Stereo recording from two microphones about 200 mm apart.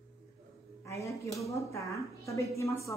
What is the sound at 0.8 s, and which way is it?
A woman's voice, 15° left (ahead or behind).